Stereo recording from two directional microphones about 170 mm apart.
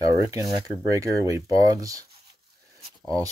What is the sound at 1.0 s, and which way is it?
Speech, 20° right (ahead or behind).